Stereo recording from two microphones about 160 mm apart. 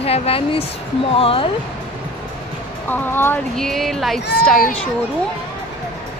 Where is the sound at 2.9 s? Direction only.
15° left (ahead or behind).